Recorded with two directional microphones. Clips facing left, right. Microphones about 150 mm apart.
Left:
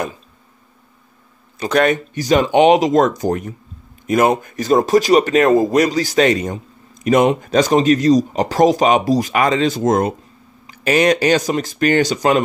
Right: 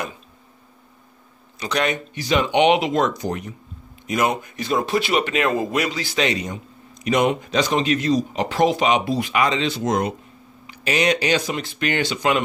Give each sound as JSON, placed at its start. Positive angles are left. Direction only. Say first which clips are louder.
{"t": 1.6, "sound": "speech", "louder": "left 7 dB", "side_deg": 50}